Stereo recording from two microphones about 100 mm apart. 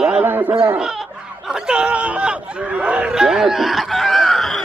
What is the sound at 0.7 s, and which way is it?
Speech, 5° right (ahead or behind).